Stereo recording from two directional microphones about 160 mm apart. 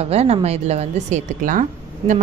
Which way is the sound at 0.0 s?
40° right (ahead or behind).